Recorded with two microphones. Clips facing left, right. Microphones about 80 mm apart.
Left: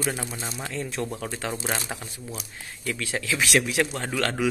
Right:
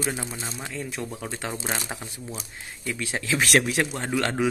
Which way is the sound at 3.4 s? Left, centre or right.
Right.